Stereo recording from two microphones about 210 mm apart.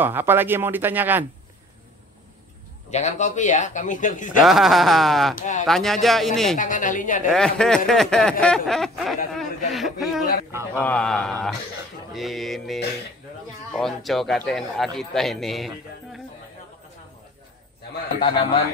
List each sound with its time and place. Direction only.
0.0 s speech: 10° right (ahead or behind)
2.9 s speech: 35° left (ahead or behind)
4.4 s speech: centre (ahead or behind)
5.3 s speech: 35° left (ahead or behind)
5.7 s speech: centre (ahead or behind)
6.5 s speech: 40° left (ahead or behind)
7.2 s speech: 5° left (ahead or behind)
10.5 s speech: 10° right (ahead or behind)
10.8 s speech: 5° left (ahead or behind)